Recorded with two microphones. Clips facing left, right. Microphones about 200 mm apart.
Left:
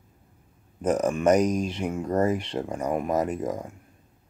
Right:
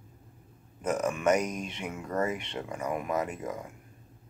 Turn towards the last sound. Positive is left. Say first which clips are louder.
# left 6 dB
turn(degrees=35)  # may be behind; listen again after turning